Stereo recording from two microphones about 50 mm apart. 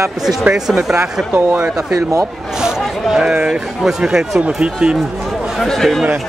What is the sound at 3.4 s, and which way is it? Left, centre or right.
A man's voice, centre.